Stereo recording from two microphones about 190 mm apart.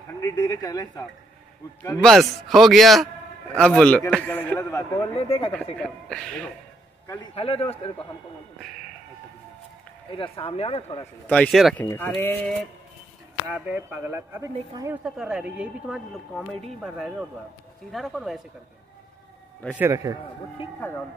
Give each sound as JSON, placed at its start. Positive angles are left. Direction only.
{"t": 0.2, "sound": "speech", "side_deg": 20}
{"t": 2.0, "sound": "a man's voice", "side_deg": 0}
{"t": 5.1, "sound": "speech", "side_deg": 30}
{"t": 5.8, "sound": "speech", "side_deg": 5}
{"t": 7.3, "sound": "speech", "side_deg": 30}
{"t": 10.1, "sound": "speech", "side_deg": 30}
{"t": 11.0, "sound": "a man's voice", "side_deg": 5}
{"t": 11.8, "sound": "a man's voice", "side_deg": 10}
{"t": 13.5, "sound": "speech", "side_deg": -10}
{"t": 15.0, "sound": "speech", "side_deg": -5}
{"t": 19.7, "sound": "speech", "side_deg": -15}